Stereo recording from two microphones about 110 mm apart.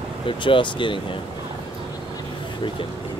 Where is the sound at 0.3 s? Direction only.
50° left (ahead or behind).